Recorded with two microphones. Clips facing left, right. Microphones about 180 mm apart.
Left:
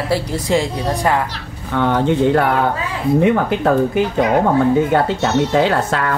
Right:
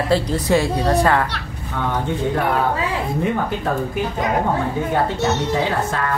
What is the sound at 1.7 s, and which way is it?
Speech, 80° left.